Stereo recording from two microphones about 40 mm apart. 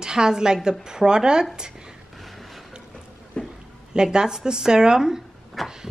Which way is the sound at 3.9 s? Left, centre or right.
Right.